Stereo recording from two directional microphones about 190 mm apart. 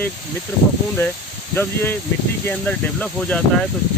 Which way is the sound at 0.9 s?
10° left (ahead or behind).